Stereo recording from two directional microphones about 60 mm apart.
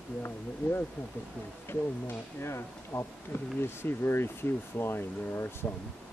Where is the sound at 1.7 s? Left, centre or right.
Left.